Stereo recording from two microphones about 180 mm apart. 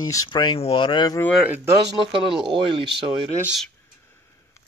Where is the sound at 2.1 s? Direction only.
30° right (ahead or behind).